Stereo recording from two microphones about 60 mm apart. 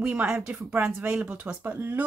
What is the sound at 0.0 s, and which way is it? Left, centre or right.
A woman's voice, right.